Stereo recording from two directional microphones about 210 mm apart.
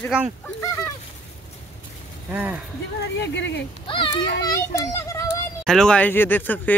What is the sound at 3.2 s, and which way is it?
Speech, 55° left (ahead or behind).